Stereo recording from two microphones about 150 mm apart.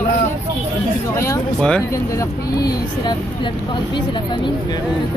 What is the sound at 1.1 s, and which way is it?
A man's voice, 15° left (ahead or behind).